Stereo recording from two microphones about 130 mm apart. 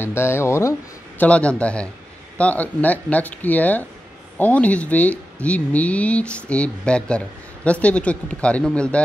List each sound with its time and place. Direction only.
0.0 s speech: 20° left (ahead or behind)